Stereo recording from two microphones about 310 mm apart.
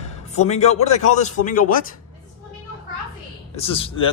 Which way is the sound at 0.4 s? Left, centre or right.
Left.